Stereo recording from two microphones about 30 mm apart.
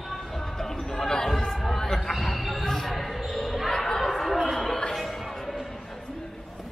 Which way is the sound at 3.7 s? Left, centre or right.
Centre.